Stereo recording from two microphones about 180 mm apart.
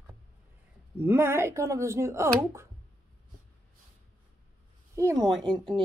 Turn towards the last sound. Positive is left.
turn(degrees=-30)  # may be behind; listen again after turning